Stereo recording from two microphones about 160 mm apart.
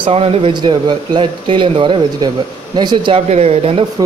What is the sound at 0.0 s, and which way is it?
Speech, 40° right (ahead or behind).